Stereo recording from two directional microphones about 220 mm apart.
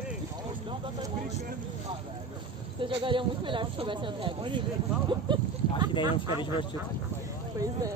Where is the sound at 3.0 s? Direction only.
20° right (ahead or behind).